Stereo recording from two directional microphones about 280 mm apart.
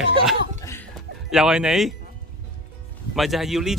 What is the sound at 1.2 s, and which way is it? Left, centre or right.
Speech, centre.